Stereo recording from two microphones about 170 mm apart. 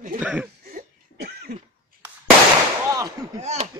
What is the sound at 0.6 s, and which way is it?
Cough, 65° right (ahead or behind).